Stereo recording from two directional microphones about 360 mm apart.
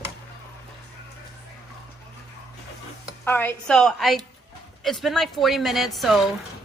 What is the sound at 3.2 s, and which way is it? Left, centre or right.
A woman's voice, centre.